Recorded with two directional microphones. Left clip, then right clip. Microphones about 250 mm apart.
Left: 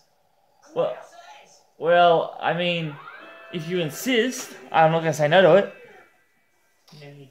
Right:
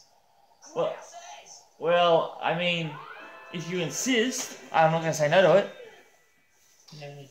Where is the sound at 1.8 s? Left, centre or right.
Left.